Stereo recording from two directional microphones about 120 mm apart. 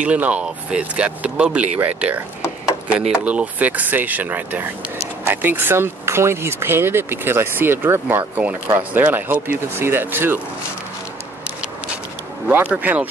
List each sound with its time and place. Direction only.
0.0 s speech: 10° right (ahead or behind)
12.4 s speech: 15° right (ahead or behind)